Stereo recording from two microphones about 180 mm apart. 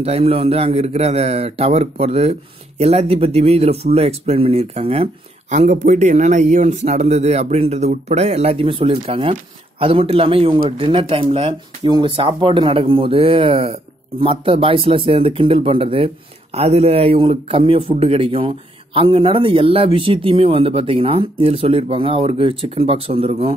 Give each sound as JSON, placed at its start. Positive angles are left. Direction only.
{"t": 0.0, "sound": "speech", "side_deg": -35}